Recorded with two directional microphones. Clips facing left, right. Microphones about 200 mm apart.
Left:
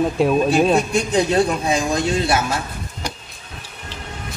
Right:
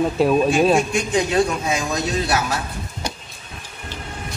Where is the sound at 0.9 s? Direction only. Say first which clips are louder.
Left 2 dB; 35° left (ahead or behind).